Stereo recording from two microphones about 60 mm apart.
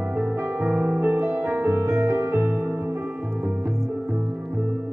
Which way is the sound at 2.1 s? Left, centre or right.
Right.